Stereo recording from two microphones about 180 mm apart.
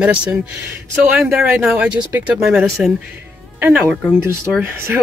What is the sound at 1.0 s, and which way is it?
Speech, 5° right (ahead or behind).